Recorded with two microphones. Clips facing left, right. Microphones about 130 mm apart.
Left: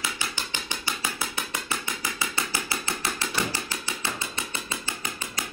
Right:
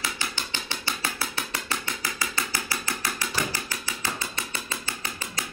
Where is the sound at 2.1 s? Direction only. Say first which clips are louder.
Left 1 dB; 25° left (ahead or behind).